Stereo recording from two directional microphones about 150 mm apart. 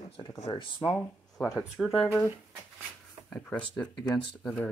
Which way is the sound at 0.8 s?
15° left (ahead or behind).